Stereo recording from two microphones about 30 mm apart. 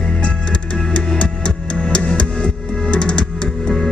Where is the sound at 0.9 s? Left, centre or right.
Left.